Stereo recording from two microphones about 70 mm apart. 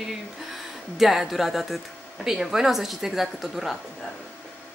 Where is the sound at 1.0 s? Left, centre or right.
Centre.